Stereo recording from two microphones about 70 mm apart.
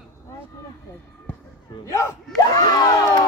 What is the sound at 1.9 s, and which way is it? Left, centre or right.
Speech, left.